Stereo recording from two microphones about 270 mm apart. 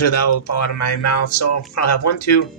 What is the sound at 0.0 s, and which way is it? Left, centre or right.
Speech, left.